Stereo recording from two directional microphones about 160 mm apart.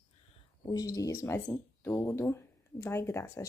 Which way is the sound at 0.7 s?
20° left (ahead or behind).